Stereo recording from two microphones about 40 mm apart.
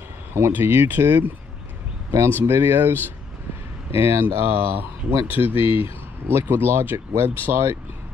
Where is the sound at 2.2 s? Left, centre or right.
Right.